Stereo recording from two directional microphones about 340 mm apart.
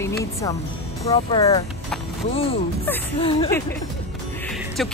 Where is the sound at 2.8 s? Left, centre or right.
Centre.